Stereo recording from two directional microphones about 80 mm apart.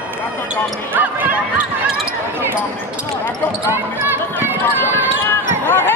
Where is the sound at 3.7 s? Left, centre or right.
Right.